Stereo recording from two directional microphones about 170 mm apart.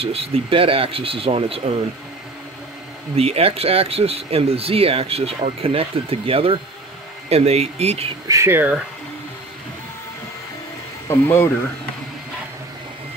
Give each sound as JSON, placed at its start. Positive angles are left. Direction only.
{"t": 0.0, "sound": "speech", "side_deg": -35}
{"t": 3.2, "sound": "speech", "side_deg": -35}
{"t": 8.3, "sound": "speech", "side_deg": -15}
{"t": 11.1, "sound": "speech", "side_deg": 15}